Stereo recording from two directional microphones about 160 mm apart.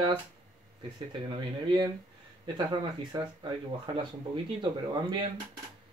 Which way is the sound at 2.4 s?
30° right (ahead or behind).